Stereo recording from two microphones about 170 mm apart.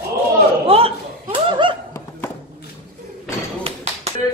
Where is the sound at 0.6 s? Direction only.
35° right (ahead or behind).